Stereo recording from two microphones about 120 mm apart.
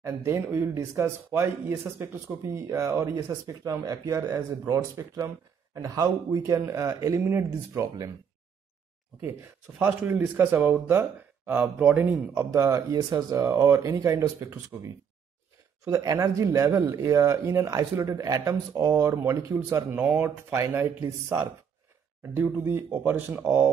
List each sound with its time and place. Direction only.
0.0 s speech: 20° right (ahead or behind)
9.8 s speech: 15° right (ahead or behind)